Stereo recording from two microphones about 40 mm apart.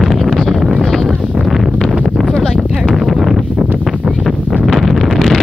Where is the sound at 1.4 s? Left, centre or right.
Centre.